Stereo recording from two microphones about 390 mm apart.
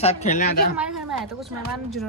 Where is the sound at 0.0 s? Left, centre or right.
Centre.